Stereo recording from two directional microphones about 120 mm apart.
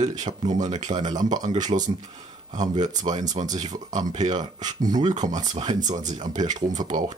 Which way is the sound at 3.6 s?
90° right.